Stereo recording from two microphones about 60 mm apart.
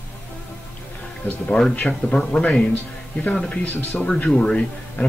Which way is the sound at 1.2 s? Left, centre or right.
Left.